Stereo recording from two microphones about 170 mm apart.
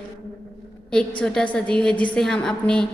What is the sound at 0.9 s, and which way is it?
A woman's voice, 5° left (ahead or behind).